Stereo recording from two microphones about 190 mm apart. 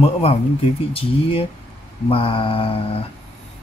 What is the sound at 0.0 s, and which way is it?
Speech, 35° left (ahead or behind).